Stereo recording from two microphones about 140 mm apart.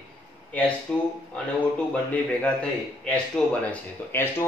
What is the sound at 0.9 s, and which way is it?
Speech, 5° left (ahead or behind).